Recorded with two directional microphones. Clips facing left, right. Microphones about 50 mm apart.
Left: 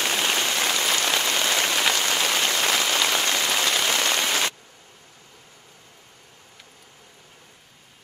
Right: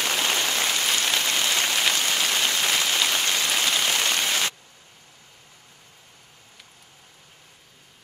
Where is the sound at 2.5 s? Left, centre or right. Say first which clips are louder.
Left 1 dB; left.